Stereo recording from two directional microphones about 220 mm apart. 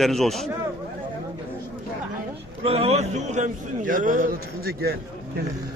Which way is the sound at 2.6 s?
25° right (ahead or behind).